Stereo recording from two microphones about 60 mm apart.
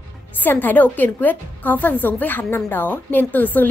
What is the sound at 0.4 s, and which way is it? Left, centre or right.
A woman's voice, left.